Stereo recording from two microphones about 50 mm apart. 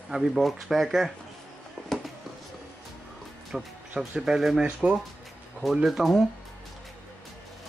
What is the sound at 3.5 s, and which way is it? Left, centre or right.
Speech, centre.